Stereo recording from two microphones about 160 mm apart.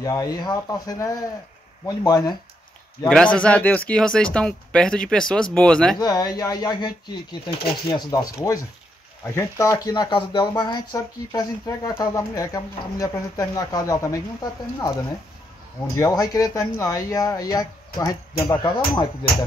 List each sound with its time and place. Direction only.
0.0 s speech: 20° left (ahead or behind)
3.1 s speech: 5° left (ahead or behind)
5.9 s speech: 25° left (ahead or behind)
9.3 s speech: 20° left (ahead or behind)
16.0 s speech: 25° left (ahead or behind)